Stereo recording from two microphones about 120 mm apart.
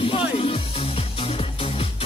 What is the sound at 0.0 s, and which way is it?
Music, 50° left (ahead or behind).